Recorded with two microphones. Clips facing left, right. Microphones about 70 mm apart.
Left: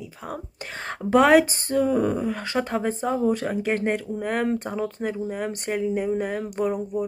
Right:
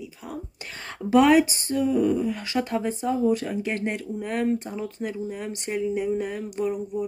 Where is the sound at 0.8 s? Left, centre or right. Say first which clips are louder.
Left 1 dB; left.